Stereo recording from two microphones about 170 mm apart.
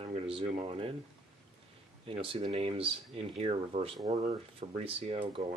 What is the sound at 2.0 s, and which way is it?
Speech, 35° right (ahead or behind).